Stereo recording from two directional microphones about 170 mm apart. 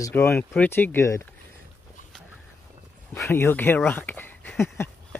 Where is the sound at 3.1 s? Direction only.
10° left (ahead or behind).